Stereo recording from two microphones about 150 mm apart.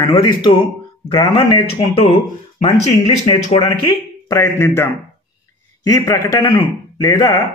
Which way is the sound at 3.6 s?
20° left (ahead or behind).